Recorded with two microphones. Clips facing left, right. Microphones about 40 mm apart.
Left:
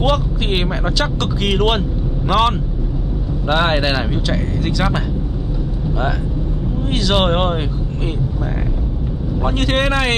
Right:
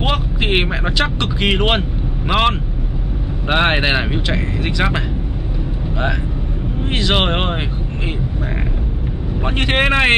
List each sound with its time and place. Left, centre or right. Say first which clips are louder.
0.0 s speech: left 2 dB; right
6.9 s speech: left 1 dB; right
9.4 s speech: right 1 dB; right